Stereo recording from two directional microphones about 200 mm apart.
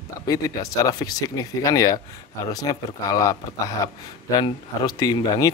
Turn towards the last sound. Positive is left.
turn(degrees=20)  # may be behind; listen again after turning